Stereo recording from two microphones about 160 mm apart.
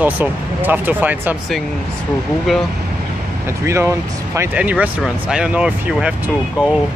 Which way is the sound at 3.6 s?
15° right (ahead or behind).